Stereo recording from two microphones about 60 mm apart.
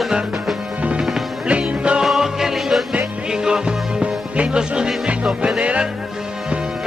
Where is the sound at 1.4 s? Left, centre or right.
Centre.